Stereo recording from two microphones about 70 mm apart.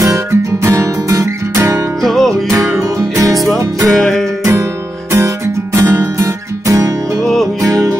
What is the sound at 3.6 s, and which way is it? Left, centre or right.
Music, right.